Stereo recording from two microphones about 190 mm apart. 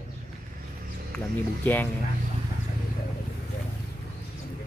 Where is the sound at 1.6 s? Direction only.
10° left (ahead or behind).